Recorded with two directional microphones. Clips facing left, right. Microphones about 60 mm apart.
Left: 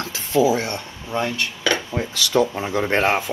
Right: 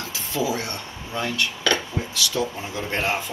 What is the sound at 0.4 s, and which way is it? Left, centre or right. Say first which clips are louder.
Speech: left 8 dB; left.